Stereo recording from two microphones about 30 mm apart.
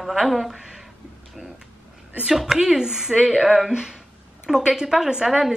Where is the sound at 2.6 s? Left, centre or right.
Centre.